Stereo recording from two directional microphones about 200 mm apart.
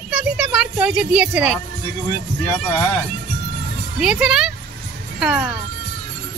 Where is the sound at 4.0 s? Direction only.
5° right (ahead or behind).